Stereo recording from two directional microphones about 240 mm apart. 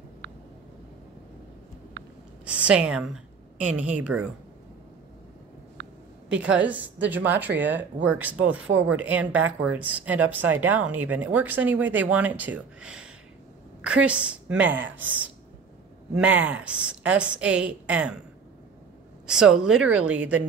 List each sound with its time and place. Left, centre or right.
2.4 s a woman's voice: centre
5.8 s a sound: right
6.2 s a woman's voice: centre
19.2 s a woman's voice: centre